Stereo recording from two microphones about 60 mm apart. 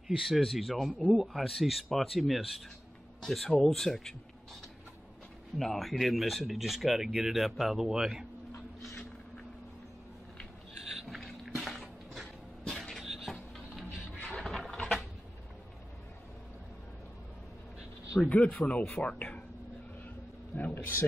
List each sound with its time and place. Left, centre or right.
0.3 s speech: centre
5.6 s speech: centre
11.1 s a sound: centre
13.8 s music: left
14.3 s a sound: centre
18.2 s speech: left
20.5 s speech: left